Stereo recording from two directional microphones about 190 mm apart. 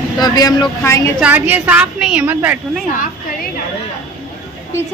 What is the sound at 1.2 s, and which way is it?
A woman's voice, 10° right (ahead or behind).